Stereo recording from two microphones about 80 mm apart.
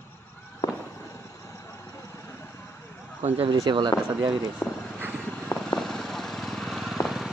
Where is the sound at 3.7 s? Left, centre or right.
Right.